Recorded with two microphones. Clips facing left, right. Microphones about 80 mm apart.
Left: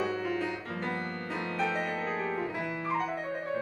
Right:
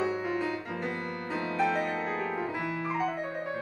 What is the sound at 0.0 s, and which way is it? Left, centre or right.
Music, right.